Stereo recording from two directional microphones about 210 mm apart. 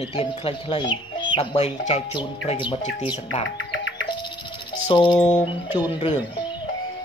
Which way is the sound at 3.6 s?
60° left (ahead or behind).